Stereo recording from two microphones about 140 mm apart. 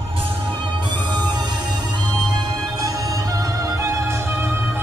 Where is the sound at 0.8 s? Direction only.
30° right (ahead or behind); by 4.8 s 15° right (ahead or behind).